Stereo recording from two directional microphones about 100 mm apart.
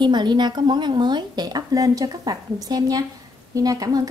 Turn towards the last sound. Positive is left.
turn(degrees=-40)  # may be behind; listen again after turning